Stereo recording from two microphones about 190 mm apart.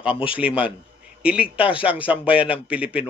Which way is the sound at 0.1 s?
25° left (ahead or behind).